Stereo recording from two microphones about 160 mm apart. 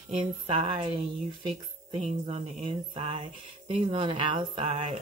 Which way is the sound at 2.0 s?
40° right (ahead or behind).